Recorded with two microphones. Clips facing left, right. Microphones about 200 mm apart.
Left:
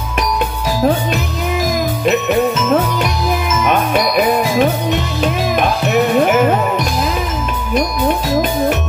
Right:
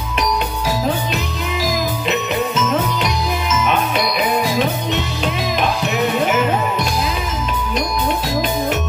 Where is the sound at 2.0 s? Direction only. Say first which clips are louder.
Left 9 dB; 50° left (ahead or behind).